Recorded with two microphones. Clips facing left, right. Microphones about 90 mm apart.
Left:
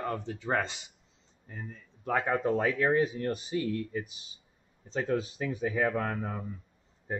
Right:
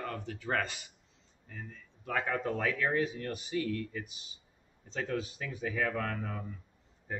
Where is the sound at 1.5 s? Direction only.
35° left (ahead or behind).